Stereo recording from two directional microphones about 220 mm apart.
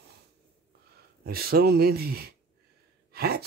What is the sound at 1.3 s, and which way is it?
Speech, 45° right (ahead or behind).